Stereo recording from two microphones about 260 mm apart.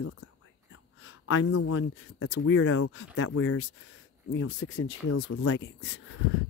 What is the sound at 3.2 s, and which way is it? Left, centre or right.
Speech, left.